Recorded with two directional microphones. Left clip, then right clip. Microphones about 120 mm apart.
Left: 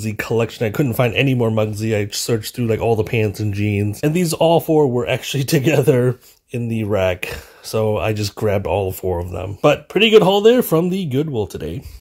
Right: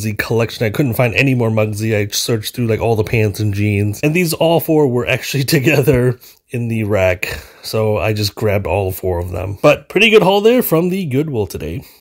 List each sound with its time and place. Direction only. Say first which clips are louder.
0.0 s speech: right 3 dB; 40° right (ahead or behind)